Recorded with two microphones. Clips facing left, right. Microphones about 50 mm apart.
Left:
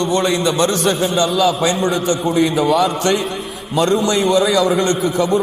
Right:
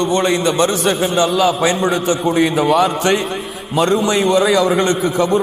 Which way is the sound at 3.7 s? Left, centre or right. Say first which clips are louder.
Right 1 dB; centre.